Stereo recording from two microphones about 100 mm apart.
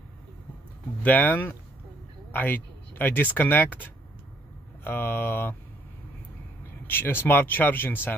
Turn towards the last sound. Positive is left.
turn(degrees=20)  # may be behind; listen again after turning